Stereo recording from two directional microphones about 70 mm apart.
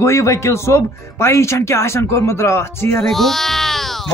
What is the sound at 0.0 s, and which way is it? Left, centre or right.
Speech, left.